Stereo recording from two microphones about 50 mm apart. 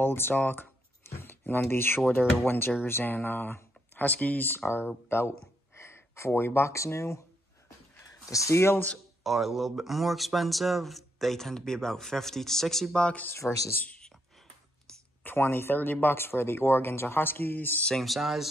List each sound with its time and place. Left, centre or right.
0.0 s a sound: left
1.7 s speech: left
4.6 s speech: left
5.8 s speech: left
8.3 s speech: left
9.2 s speech: centre
12.9 s speech: left
15.2 s speech: left
17.9 s speech: centre